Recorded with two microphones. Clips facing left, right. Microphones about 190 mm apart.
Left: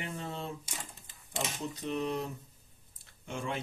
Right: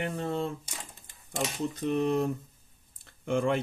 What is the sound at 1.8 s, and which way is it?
Speech, 50° right (ahead or behind).